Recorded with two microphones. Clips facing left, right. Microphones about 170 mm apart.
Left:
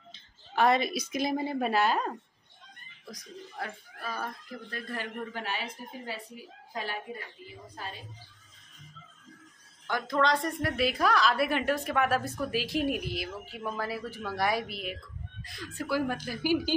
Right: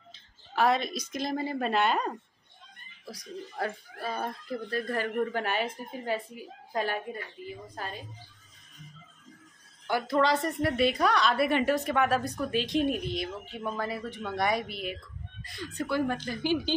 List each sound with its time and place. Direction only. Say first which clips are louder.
0.1 s a woman's voice: left 1 dB; centre (ahead or behind)
3.5 s a woman's voice: right 6 dB; 40° right (ahead or behind)
9.8 s a woman's voice: right 2 dB; 10° right (ahead or behind); by 16.7 s 10° left (ahead or behind)